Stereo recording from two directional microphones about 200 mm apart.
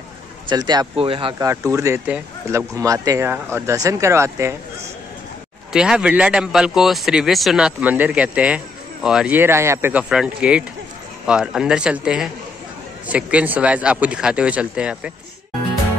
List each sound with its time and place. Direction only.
0.5 s speech: 20° right (ahead or behind)
1.5 s speech: 15° right (ahead or behind)
5.7 s speech: 5° right (ahead or behind)